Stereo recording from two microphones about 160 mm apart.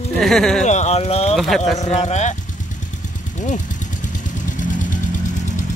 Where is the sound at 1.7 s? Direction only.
45° left (ahead or behind).